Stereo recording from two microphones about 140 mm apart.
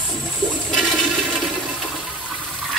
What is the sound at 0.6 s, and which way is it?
Toilet flush, centre (ahead or behind).